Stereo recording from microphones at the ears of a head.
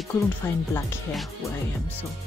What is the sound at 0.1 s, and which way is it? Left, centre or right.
Speech, left.